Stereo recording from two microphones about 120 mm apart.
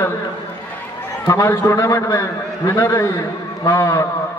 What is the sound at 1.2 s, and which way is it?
A man's voice, 25° left (ahead or behind).